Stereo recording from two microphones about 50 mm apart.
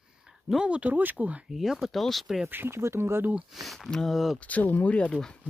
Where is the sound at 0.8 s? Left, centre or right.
Right.